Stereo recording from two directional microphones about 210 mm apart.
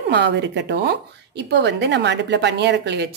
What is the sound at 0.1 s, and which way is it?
A woman's voice, 55° right (ahead or behind).